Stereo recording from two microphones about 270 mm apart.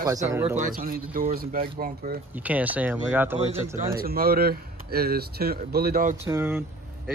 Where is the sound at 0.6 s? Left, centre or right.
Right.